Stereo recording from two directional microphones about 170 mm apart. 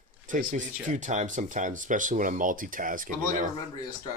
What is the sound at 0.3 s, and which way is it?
Speech, 50° right (ahead or behind).